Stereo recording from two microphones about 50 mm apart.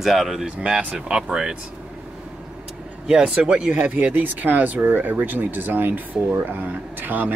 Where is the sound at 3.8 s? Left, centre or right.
Right.